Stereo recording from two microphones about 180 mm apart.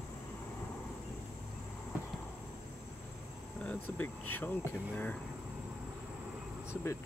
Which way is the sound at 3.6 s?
10° left (ahead or behind).